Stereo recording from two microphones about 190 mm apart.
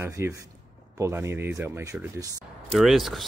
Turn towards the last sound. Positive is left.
turn(degrees=0)  # may be behind; listen again after turning